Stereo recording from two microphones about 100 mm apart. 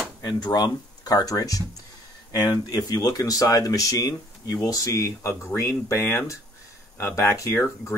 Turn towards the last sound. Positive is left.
turn(degrees=25)  # may be behind; listen again after turning